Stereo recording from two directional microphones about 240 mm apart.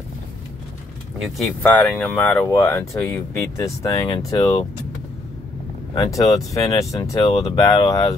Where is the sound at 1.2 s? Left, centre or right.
Centre.